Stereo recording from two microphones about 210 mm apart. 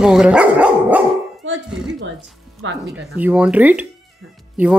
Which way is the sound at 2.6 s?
65° right (ahead or behind).